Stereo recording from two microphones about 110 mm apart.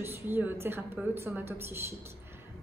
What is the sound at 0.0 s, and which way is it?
A woman's voice, 20° right (ahead or behind).